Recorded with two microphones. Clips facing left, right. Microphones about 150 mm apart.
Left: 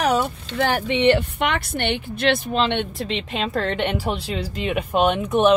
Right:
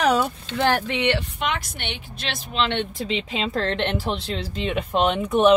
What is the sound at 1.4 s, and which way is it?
Speech, 60° left (ahead or behind).